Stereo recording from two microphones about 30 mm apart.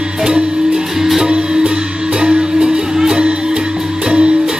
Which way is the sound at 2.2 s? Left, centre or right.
Right.